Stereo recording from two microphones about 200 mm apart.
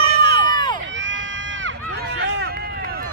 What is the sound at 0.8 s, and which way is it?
Run, 65° right (ahead or behind).